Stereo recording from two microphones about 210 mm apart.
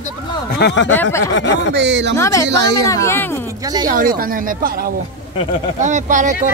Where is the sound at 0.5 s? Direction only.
55° left (ahead or behind).